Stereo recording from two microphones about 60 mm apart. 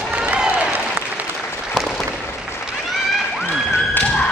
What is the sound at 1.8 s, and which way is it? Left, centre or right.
Applause, centre.